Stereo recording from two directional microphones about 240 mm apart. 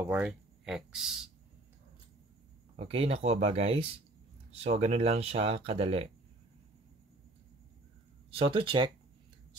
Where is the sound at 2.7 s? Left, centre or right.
Right.